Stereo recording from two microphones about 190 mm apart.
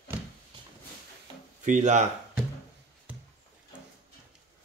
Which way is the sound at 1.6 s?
40° right (ahead or behind).